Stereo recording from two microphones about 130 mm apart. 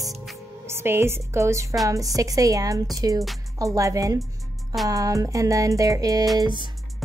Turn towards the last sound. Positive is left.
turn(degrees=-25)  # may be behind; listen again after turning